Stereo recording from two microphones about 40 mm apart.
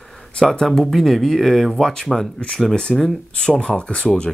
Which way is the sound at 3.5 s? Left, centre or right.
Left.